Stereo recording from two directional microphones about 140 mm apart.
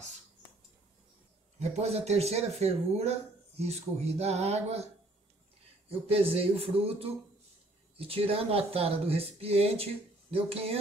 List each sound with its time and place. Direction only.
1.6 s speech: 50° right (ahead or behind)
5.9 s speech: 45° right (ahead or behind)